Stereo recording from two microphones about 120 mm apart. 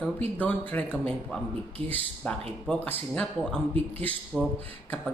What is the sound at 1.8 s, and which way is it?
Speech, 45° right (ahead or behind).